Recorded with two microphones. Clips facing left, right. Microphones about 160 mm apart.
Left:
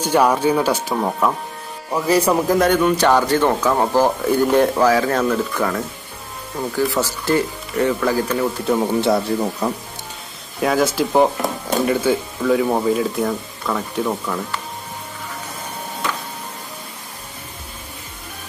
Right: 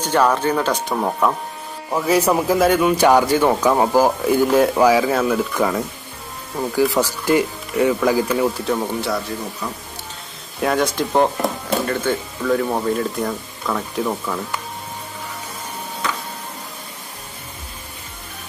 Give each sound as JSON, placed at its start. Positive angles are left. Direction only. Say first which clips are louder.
{"t": 0.0, "sound": "speech", "louder": "left 1 dB", "side_deg": 10}
{"t": 8.7, "sound": "speech", "louder": "left 5 dB", "side_deg": 20}
{"t": 10.6, "sound": "speech", "louder": "left 2 dB", "side_deg": 0}